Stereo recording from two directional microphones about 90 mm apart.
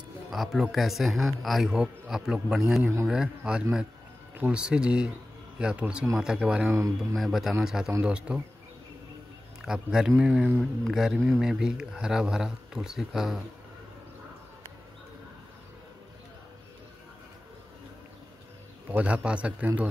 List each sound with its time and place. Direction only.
0.3 s a man's voice: centre (ahead or behind)
6.7 s speech: 35° right (ahead or behind)
7.2 s a man's voice: centre (ahead or behind)
9.7 s speech: 10° right (ahead or behind)
10.6 s a man's voice: centre (ahead or behind)
18.9 s speech: 15° right (ahead or behind)